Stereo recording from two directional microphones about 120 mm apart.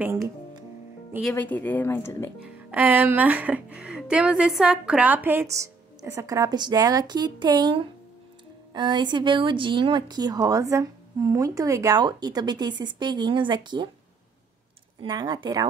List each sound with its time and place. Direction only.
1.3 s a woman's voice: 15° left (ahead or behind)
2.4 s speech: 15° right (ahead or behind)
12.0 s speech: 35° right (ahead or behind)
15.0 s speech: 35° right (ahead or behind)